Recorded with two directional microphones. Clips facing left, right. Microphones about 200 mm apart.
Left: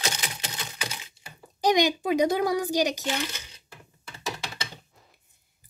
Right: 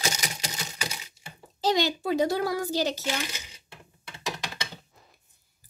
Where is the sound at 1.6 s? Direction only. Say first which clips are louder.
Left 3 dB; 15° left (ahead or behind).